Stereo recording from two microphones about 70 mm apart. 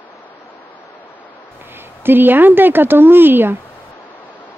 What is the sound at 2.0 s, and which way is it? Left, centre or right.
Speech, right.